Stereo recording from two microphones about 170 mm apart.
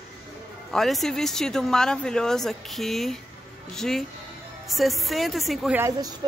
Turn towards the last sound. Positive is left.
turn(degrees=-15)  # may be behind; listen again after turning